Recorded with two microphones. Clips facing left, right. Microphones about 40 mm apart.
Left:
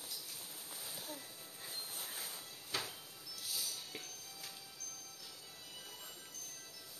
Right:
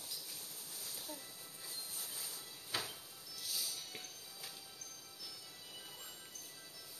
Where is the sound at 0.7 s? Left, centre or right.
Left.